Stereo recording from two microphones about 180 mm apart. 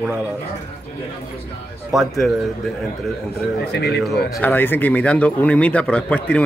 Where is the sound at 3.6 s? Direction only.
65° left (ahead or behind).